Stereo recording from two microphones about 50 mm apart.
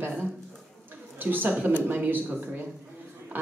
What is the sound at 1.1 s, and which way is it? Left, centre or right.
A woman's voice, right.